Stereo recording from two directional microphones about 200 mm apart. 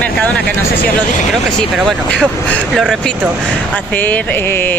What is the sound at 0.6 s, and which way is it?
Speech, 45° left (ahead or behind).